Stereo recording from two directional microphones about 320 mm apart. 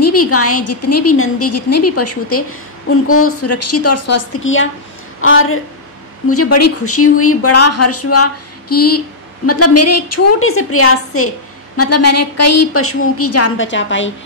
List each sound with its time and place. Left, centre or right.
0.0 s speech: left